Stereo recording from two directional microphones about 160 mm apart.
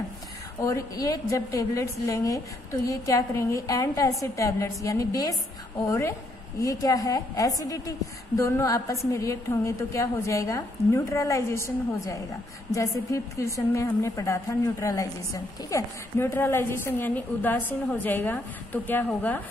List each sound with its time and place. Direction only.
0.6 s a woman's voice: 20° left (ahead or behind)